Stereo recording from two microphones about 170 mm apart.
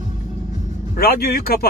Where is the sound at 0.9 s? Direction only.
65° left (ahead or behind).